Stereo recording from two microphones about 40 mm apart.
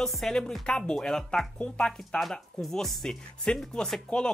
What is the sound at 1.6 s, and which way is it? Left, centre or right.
Speech, left.